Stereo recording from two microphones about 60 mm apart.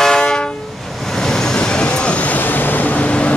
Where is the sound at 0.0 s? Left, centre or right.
Centre.